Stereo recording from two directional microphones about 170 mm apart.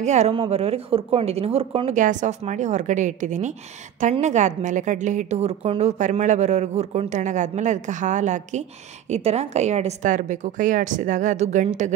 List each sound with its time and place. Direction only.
0.0 s a woman's voice: 40° right (ahead or behind)
2.0 s a woman's voice: 45° right (ahead or behind)